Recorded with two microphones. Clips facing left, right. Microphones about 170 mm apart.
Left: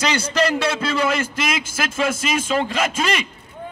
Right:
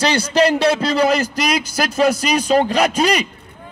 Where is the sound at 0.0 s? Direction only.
35° right (ahead or behind).